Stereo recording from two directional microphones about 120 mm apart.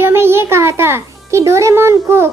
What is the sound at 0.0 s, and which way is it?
A child's voice, 20° right (ahead or behind).